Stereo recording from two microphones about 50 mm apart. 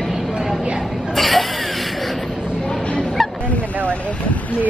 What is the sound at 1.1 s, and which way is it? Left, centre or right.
Chuckle, centre.